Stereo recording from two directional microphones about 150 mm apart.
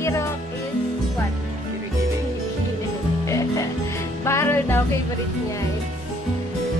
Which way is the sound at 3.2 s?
20° left (ahead or behind).